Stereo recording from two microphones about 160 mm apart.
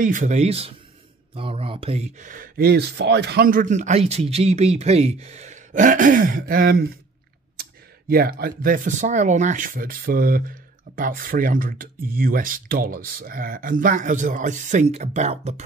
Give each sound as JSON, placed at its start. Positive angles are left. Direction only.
{"t": 0.0, "sound": "speech", "side_deg": -50}
{"t": 8.1, "sound": "speech", "side_deg": -70}